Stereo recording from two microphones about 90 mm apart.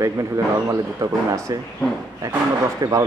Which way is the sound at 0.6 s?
40° right (ahead or behind).